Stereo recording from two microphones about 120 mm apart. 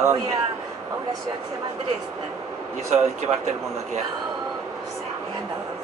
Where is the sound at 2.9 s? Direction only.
70° right (ahead or behind).